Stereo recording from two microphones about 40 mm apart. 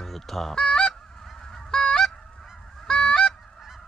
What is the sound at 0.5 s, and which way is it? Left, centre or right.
Goose, left.